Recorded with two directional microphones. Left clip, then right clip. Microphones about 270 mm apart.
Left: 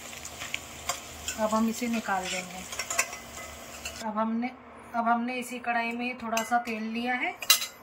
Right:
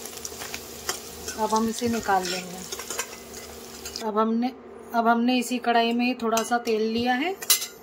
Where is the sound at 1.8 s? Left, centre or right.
Right.